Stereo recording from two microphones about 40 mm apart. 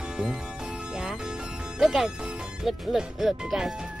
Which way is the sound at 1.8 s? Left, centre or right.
Centre.